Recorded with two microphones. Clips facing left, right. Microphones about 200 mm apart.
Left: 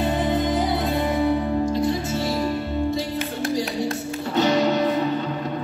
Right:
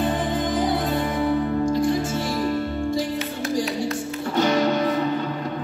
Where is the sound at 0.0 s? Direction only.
25° left (ahead or behind).